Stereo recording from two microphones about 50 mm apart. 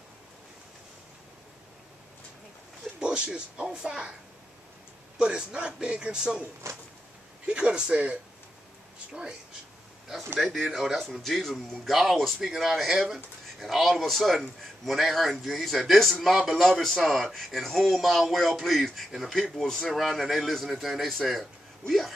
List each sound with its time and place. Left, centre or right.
3.0 s a man's voice: centre
5.2 s a man's voice: centre
6.7 s a sound: right
7.4 s speech: centre
10.4 s speech: centre